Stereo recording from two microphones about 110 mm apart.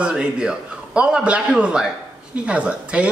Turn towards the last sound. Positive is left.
turn(degrees=-10)  # may be behind; listen again after turning